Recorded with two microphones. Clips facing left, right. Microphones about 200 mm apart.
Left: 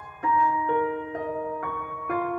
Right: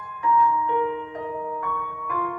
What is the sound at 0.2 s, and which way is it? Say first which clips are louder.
Music: right 3 dB; 50° left (ahead or behind).